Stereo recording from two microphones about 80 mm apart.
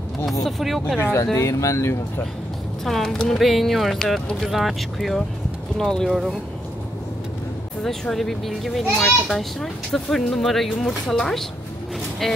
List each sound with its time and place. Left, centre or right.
0.2 s a child's voice: centre
1.3 s speech: left
2.8 s a child's voice: centre
6.0 s a child's voice: centre
7.8 s a child's voice: centre